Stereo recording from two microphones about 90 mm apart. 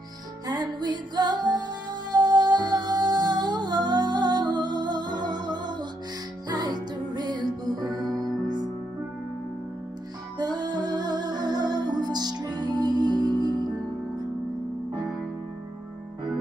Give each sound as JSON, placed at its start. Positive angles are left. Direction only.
{"t": 0.5, "sound": "music", "side_deg": -50}
{"t": 10.4, "sound": "music", "side_deg": -50}